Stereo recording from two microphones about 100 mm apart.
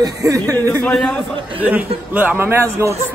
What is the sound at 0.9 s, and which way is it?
Speech, 10° left (ahead or behind).